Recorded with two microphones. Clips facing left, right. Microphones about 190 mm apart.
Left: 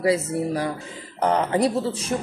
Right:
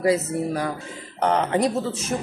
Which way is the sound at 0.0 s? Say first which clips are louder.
Even; 30° left (ahead or behind).